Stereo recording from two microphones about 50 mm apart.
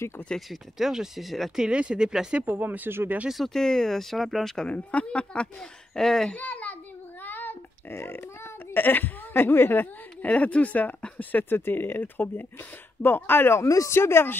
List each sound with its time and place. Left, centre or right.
0.5 s speech: centre
1.7 s speech: centre
2.4 s speech: right
3.4 s speech: centre
4.6 s speech: left
5.9 s speech: centre
6.3 s a sound: left
7.2 s oink: left
7.9 s speech: left
8.7 s speech: left
11.4 s speech: left
13.6 s speech: left